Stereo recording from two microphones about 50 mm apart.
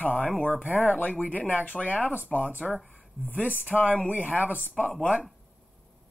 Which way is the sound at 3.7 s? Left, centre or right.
Left.